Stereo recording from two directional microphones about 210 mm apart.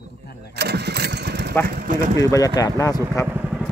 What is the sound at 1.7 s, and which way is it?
Speech, 45° right (ahead or behind).